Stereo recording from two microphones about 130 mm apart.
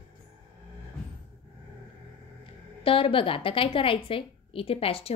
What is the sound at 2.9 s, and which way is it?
A woman's voice, 45° left (ahead or behind).